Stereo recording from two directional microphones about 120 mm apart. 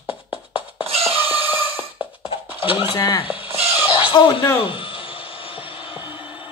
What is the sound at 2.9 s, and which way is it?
Speech, 30° left (ahead or behind).